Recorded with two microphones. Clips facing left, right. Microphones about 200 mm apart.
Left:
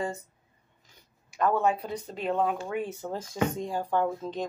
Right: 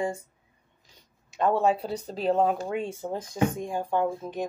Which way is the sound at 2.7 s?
25° right (ahead or behind).